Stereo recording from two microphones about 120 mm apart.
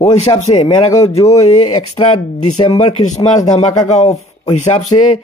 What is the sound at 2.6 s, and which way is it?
A man's voice, 65° left (ahead or behind).